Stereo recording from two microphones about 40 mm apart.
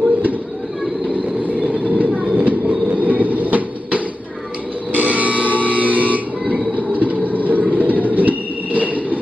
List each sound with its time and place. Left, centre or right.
1.4 s vehicle: right
2.0 s train: right
2.7 s train: right
4.9 s fire alarm: right
5.7 s train: right